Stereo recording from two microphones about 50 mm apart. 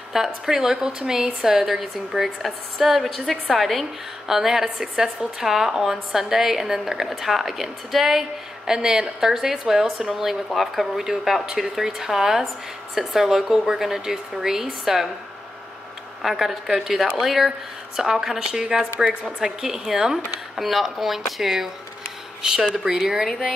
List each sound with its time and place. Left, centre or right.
0.1 s a woman's voice: centre
16.2 s a woman's voice: centre